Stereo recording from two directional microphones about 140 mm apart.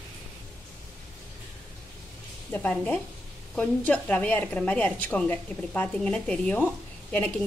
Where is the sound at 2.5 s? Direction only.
10° left (ahead or behind).